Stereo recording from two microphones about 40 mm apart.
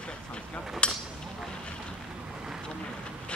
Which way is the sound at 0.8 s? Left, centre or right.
Left.